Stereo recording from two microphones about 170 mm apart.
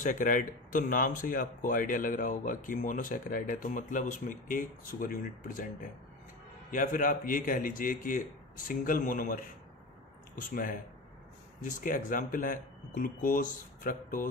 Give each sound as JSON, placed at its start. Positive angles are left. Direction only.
{"t": 0.0, "sound": "speech", "side_deg": 50}
{"t": 10.5, "sound": "speech", "side_deg": 55}